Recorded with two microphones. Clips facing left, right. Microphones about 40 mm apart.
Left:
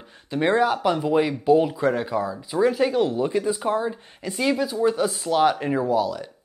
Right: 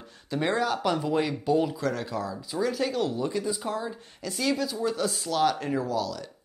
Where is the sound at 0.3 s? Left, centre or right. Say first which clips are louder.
Left 6 dB; left.